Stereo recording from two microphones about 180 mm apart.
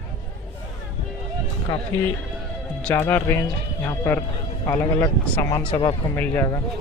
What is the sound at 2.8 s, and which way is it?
Speech, 10° left (ahead or behind).